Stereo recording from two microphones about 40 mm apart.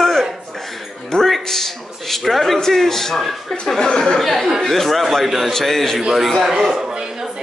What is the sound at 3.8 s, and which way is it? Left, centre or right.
Speech, centre.